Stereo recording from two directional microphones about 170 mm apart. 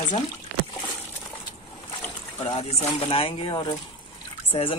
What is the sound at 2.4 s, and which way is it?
Speech, 35° left (ahead or behind).